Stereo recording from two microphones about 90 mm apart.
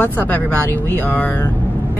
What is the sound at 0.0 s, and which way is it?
Speech, 20° left (ahead or behind).